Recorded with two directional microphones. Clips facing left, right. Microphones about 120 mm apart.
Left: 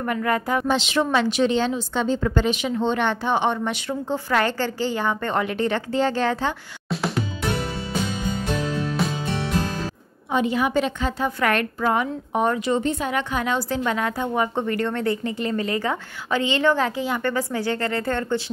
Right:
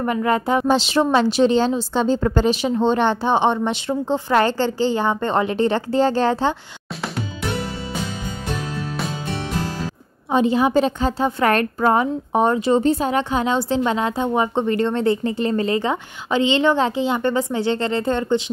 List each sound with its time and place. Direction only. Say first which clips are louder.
0.0 s a woman's voice: right 4 dB; 25° right (ahead or behind)
10.3 s a woman's voice: right 4 dB; 30° right (ahead or behind)